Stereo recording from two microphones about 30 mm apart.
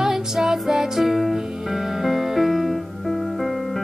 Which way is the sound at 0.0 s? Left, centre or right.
Centre.